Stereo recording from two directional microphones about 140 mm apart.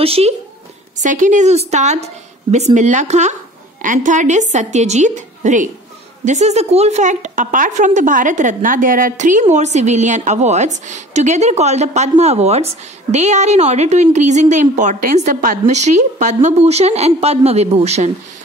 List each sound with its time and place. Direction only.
0.0 s a woman's voice: 45° right (ahead or behind)
0.9 s a woman's voice: 65° right (ahead or behind)
3.8 s a woman's voice: 70° right (ahead or behind)
15.1 s a woman's voice: 60° right (ahead or behind)